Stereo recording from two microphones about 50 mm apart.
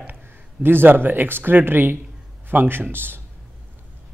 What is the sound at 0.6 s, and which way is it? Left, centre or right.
A man's voice, right.